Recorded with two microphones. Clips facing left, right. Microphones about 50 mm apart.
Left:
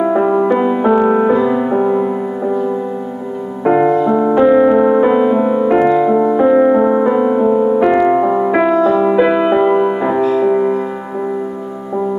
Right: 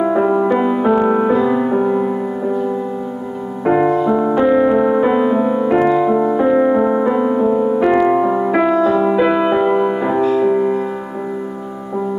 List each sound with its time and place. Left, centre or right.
0.0 s music: centre